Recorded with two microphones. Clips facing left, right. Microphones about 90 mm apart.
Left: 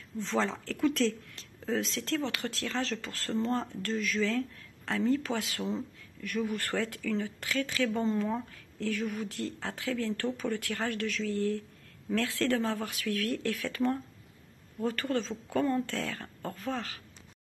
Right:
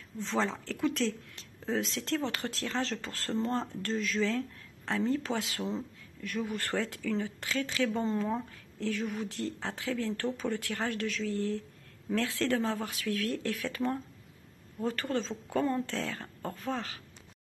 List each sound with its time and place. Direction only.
0.2 s speech: 20° right (ahead or behind)
5.6 s speech: 5° right (ahead or behind)
6.2 s speech: 20° right (ahead or behind)